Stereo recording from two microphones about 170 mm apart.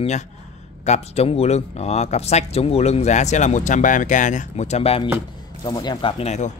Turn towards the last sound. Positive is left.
turn(degrees=40)  # may be behind; listen again after turning